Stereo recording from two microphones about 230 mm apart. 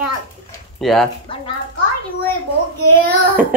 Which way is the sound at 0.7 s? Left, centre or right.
Centre.